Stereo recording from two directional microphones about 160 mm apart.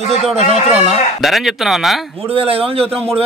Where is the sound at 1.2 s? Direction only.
Centre (ahead or behind).